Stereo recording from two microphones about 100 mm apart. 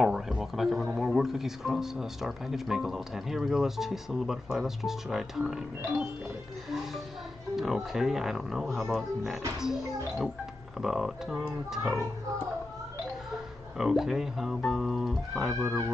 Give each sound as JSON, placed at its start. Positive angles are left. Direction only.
{"t": 0.0, "sound": "speech", "side_deg": -5}
{"t": 7.5, "sound": "speech", "side_deg": -5}
{"t": 13.7, "sound": "speech", "side_deg": -5}
{"t": 15.5, "sound": "speech", "side_deg": -25}